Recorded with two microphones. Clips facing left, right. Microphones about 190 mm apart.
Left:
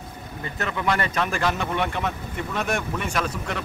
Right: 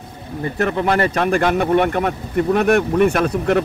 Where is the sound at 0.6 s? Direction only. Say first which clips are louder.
Right 8 dB; 55° right (ahead or behind).